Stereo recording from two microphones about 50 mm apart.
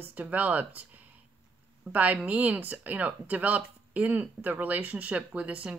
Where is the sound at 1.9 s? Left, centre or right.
Right.